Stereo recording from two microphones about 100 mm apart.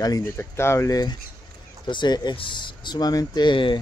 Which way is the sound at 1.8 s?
50° left (ahead or behind).